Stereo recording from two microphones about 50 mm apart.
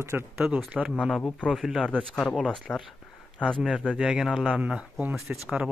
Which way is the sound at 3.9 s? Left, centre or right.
Centre.